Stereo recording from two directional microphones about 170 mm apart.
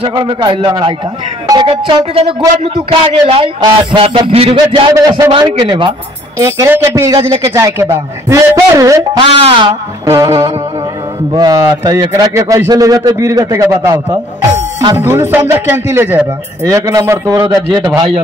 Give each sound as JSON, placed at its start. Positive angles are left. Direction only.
{"t": 0.1, "sound": "a man's voice", "side_deg": -25}
{"t": 5.0, "sound": "speech", "side_deg": -20}
{"t": 9.4, "sound": "a man's voice", "side_deg": -30}
{"t": 10.0, "sound": "a man's voice", "side_deg": -20}